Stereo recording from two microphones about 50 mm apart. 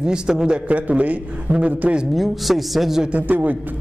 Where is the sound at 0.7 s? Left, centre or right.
Right.